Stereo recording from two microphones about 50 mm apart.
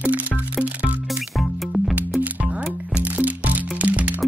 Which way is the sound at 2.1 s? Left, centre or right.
Right.